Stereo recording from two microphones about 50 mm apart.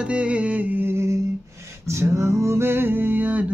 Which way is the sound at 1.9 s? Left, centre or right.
Right.